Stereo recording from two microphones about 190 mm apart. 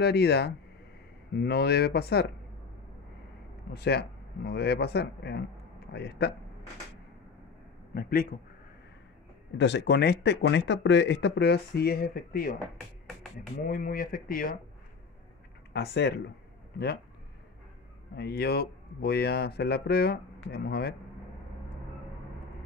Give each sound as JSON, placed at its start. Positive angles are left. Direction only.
{"t": 0.0, "sound": "speech", "side_deg": 60}
{"t": 3.7, "sound": "speech", "side_deg": 60}
{"t": 7.9, "sound": "speech", "side_deg": 50}
{"t": 9.6, "sound": "speech", "side_deg": 65}
{"t": 13.7, "sound": "speech", "side_deg": 50}
{"t": 15.7, "sound": "speech", "side_deg": 60}
{"t": 18.1, "sound": "speech", "side_deg": 60}